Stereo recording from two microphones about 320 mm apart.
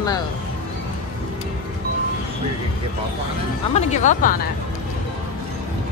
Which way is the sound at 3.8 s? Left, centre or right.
Left.